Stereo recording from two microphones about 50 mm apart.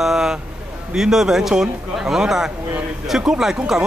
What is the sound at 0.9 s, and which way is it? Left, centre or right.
A man's voice, centre.